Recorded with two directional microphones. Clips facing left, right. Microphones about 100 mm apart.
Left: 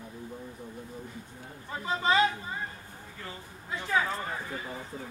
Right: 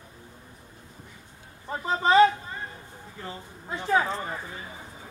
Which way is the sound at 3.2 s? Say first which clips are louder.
Right 5 dB; 30° right (ahead or behind).